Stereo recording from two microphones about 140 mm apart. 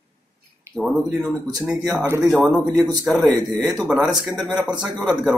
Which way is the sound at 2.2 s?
Centre (ahead or behind).